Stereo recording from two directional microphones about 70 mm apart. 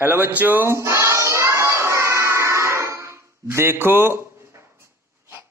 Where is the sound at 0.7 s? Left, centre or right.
Right.